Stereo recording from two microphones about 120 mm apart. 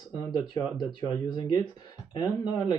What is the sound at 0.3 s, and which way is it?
Speech, 40° left (ahead or behind).